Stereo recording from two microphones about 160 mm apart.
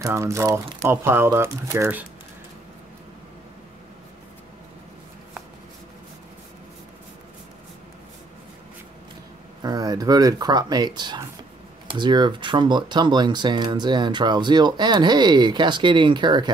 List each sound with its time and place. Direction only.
0.0 s speech: 20° right (ahead or behind)
9.6 s speech: 25° right (ahead or behind)